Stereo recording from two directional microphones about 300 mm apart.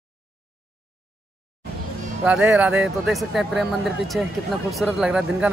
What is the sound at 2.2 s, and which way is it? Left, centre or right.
A man's voice, centre.